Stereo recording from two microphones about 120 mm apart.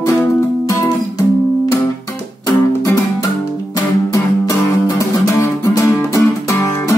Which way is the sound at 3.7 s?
30° left (ahead or behind).